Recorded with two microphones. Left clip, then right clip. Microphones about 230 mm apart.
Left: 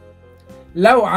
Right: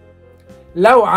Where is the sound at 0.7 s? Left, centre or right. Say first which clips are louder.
Right 2 dB; right.